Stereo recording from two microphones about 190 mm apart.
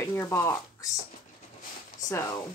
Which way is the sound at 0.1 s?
15° left (ahead or behind).